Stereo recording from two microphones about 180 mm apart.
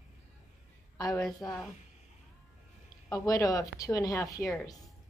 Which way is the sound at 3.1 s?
20° left (ahead or behind).